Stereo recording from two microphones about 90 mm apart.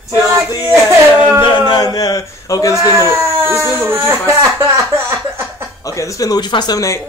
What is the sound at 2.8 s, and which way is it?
Speech, 30° right (ahead or behind).